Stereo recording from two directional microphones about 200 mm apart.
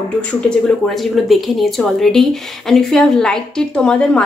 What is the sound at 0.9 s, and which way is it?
A woman's voice, centre (ahead or behind).